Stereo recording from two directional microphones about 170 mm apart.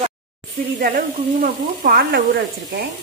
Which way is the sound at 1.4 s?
55° right (ahead or behind).